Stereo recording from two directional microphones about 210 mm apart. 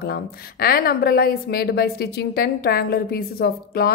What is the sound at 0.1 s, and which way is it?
A woman's voice, 45° left (ahead or behind).